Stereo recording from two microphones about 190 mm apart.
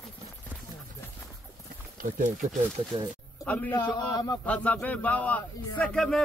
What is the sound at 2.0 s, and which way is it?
Speech, 40° right (ahead or behind).